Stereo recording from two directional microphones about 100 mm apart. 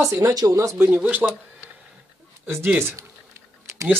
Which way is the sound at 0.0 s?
30° right (ahead or behind).